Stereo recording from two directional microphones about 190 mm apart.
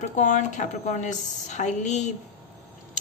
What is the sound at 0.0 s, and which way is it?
A woman's voice, 40° left (ahead or behind).